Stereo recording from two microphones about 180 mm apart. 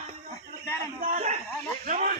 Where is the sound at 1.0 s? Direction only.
45° right (ahead or behind).